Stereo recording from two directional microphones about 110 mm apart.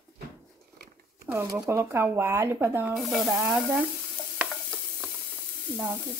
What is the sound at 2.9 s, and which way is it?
Speech, centre (ahead or behind).